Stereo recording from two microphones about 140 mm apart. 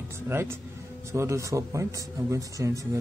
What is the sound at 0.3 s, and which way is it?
A man's voice, 15° right (ahead or behind).